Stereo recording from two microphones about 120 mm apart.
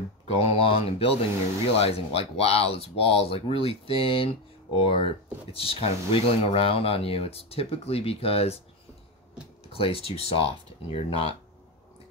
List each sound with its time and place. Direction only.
0.4 s speech: 55° left (ahead or behind)
9.7 s speech: 50° left (ahead or behind)